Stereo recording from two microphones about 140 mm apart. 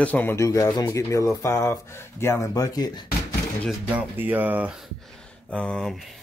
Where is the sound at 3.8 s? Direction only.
15° right (ahead or behind).